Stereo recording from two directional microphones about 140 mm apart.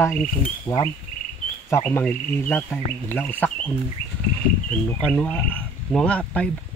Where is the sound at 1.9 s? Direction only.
15° left (ahead or behind).